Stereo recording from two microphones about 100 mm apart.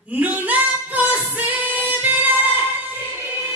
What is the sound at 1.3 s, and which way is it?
Singing, 15° right (ahead or behind).